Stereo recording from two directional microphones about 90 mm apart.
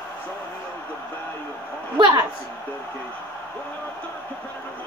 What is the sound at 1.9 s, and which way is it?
Speech, 65° right (ahead or behind).